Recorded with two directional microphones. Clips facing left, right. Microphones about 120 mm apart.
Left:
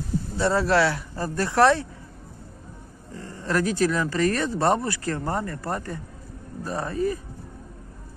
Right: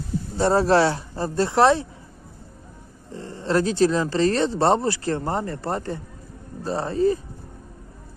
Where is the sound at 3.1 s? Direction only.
25° right (ahead or behind).